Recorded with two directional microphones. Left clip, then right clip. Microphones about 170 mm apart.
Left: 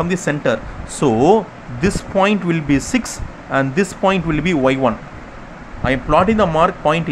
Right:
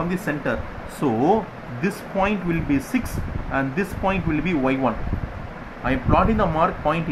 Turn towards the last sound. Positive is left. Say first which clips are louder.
# left 6 dB
turn(degrees=45)  # may be behind; listen again after turning